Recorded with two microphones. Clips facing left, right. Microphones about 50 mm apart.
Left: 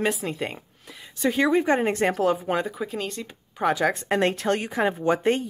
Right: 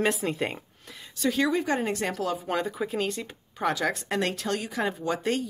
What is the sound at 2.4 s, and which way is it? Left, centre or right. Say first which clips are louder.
Speech: left 3 dB; centre.